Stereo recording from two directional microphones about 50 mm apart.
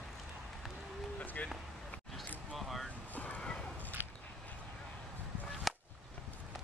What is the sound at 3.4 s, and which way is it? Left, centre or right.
Whip, centre.